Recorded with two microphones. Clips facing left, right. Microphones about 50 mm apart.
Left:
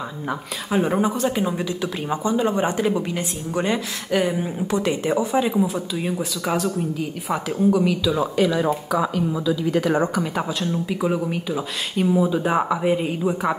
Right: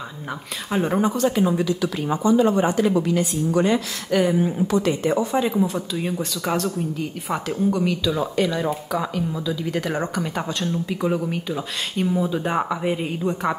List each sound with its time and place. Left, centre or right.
0.7 s speech: centre
1.6 s speech: left
5.0 s speech: centre